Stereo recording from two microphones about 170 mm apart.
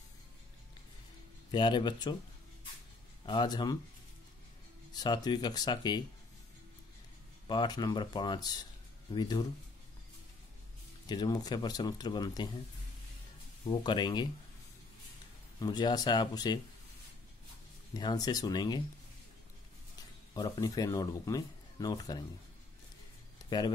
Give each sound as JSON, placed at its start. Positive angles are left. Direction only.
{"t": 1.5, "sound": "speech", "side_deg": 25}
{"t": 3.3, "sound": "speech", "side_deg": 25}
{"t": 4.9, "sound": "speech", "side_deg": 25}
{"t": 7.4, "sound": "speech", "side_deg": 25}
{"t": 11.1, "sound": "speech", "side_deg": 25}
{"t": 13.7, "sound": "speech", "side_deg": 25}
{"t": 15.6, "sound": "speech", "side_deg": 25}
{"t": 17.9, "sound": "speech", "side_deg": 25}
{"t": 20.3, "sound": "speech", "side_deg": 25}
{"t": 23.5, "sound": "speech", "side_deg": 25}